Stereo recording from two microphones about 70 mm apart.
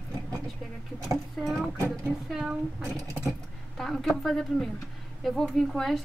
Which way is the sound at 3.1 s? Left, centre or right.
Right.